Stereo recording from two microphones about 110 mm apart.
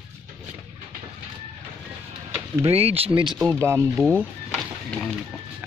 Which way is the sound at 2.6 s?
65° right (ahead or behind).